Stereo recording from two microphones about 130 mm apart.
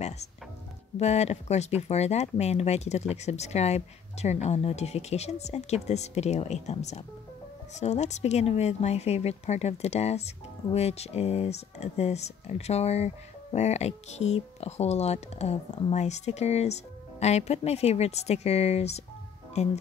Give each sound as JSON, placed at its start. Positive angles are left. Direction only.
{"t": 0.9, "sound": "speech", "side_deg": 60}